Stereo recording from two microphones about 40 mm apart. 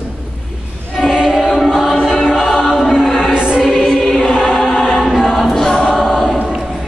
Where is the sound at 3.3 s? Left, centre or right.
Right.